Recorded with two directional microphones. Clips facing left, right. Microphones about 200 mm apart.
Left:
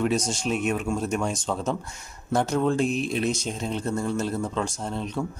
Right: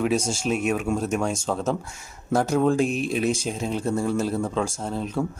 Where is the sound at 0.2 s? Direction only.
25° right (ahead or behind).